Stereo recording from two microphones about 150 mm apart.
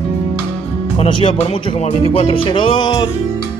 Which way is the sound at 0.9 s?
35° left (ahead or behind).